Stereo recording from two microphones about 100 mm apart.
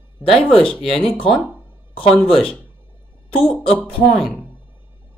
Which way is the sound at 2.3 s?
10° left (ahead or behind).